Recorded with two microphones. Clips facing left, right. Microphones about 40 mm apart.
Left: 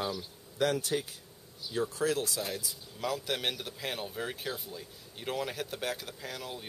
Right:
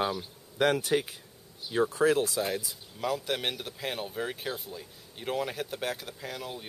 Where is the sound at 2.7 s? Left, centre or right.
Centre.